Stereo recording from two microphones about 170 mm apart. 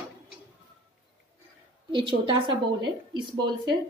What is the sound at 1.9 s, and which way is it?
A woman's voice, 30° right (ahead or behind).